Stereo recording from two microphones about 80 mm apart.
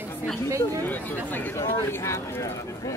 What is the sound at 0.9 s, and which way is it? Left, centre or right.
Speech, left.